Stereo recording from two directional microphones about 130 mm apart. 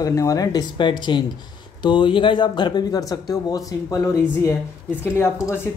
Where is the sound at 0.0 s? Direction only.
25° left (ahead or behind).